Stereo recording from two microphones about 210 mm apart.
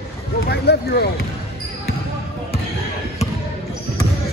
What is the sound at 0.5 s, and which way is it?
Speech, 50° left (ahead or behind).